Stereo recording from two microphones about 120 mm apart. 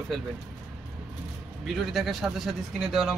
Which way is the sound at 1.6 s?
Centre (ahead or behind).